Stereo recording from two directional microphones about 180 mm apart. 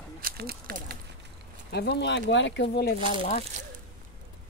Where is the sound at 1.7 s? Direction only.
65° left (ahead or behind).